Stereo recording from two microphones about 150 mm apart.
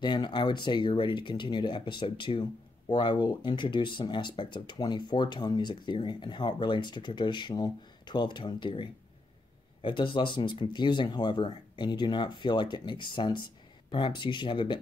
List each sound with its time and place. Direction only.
0.0 s speech: 30° left (ahead or behind)